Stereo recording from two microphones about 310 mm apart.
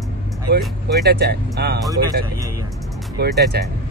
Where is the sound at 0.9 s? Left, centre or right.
Right.